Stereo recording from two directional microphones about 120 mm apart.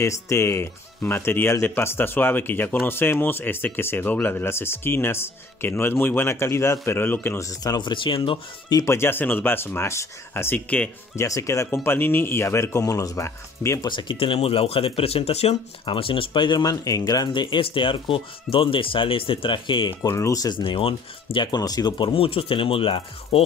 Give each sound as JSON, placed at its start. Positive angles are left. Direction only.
{"t": 0.0, "sound": "speech", "side_deg": 25}
{"t": 8.6, "sound": "speech", "side_deg": 25}
{"t": 11.1, "sound": "speech", "side_deg": 25}
{"t": 13.8, "sound": "speech", "side_deg": 45}
{"t": 20.0, "sound": "speech", "side_deg": 25}
{"t": 20.6, "sound": "speech", "side_deg": 45}